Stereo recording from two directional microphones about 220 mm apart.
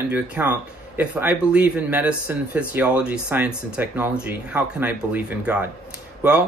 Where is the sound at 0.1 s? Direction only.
10° right (ahead or behind).